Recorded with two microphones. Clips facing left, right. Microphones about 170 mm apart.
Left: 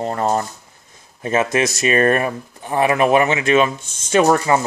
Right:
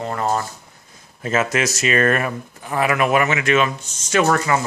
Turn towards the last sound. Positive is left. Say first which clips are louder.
# left 3 dB
turn(degrees=25)  # may be behind; listen again after turning